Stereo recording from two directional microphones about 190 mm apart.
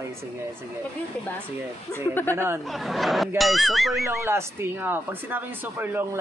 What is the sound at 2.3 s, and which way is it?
Speech, 15° right (ahead or behind).